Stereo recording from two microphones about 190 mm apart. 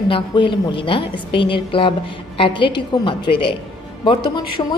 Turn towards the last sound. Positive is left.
turn(degrees=25)  # may be behind; listen again after turning